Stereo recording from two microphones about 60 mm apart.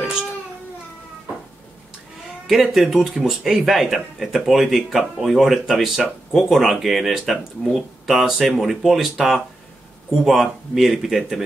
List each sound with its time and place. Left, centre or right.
2.4 s speech: centre